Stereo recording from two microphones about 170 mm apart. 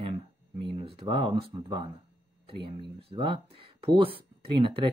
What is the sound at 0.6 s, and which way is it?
Speech, 35° right (ahead or behind).